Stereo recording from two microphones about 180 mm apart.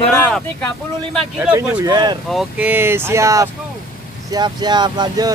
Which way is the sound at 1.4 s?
10° right (ahead or behind).